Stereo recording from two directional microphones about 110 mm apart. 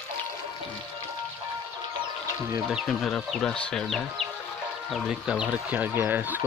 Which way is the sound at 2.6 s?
Centre (ahead or behind).